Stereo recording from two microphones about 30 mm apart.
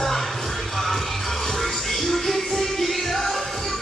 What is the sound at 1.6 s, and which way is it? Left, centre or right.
Music, centre.